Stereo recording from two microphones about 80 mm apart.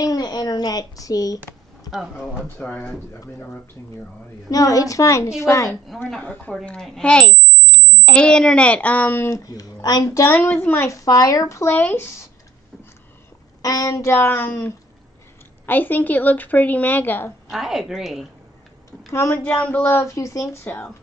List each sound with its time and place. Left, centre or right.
0.0 s speech: left
1.9 s a woman's voice: centre
2.6 s speech: centre
4.5 s speech: left
5.9 s a woman's voice: centre; by 9.3 s left
9.3 s speech: left
10.2 s a woman's voice: left
10.9 s speech: left
11.7 s a woman's voice: left
13.6 s a woman's voice: left
17.5 s a woman's voice: centre
19.1 s speech: left
19.4 s a woman's voice: centre; by 20.4 s left
20.7 s a woman's voice: left